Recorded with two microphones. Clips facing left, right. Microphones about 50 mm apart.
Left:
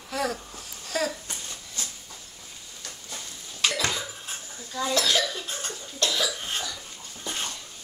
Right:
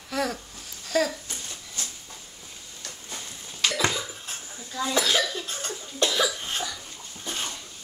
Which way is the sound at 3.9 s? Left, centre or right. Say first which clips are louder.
Even; centre.